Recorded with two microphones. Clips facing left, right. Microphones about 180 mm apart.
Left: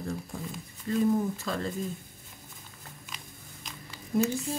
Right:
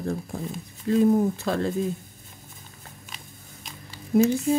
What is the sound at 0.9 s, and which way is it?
Speech, 70° right (ahead or behind).